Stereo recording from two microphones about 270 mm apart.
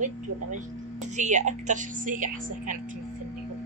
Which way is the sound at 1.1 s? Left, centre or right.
Right.